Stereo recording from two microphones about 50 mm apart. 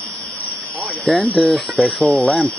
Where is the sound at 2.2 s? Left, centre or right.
Left.